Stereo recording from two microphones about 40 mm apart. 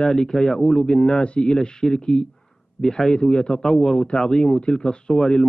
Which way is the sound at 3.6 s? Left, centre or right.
Centre.